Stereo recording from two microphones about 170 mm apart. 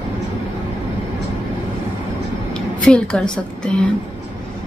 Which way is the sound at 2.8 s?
5° left (ahead or behind).